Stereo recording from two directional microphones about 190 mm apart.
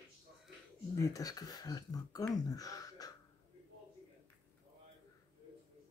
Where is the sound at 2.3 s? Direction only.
20° left (ahead or behind).